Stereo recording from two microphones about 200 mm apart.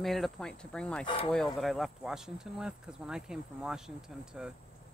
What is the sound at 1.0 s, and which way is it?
Speech, 30° left (ahead or behind).